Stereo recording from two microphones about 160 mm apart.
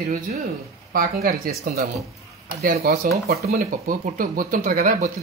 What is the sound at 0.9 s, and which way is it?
Speech, 65° right (ahead or behind).